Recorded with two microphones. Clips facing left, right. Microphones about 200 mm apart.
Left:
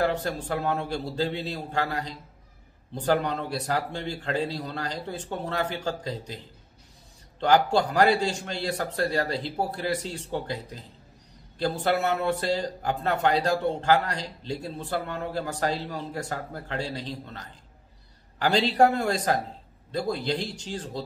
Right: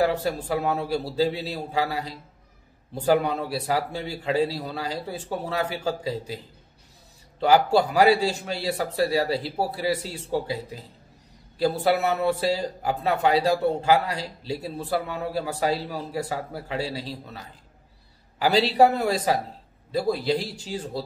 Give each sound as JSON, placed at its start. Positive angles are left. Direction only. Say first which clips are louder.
{"t": 0.0, "sound": "a man's voice", "louder": "right 3 dB", "side_deg": -5}